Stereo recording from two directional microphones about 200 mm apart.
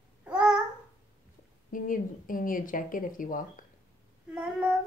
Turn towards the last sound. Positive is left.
turn(degrees=-5)  # may be behind; listen again after turning